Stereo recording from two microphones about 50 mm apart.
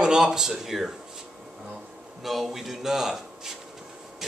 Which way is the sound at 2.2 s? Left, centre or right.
Centre.